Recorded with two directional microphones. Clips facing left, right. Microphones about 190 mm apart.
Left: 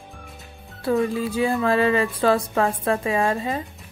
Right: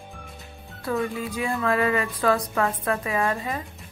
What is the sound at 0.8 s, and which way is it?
Speech, 30° left (ahead or behind).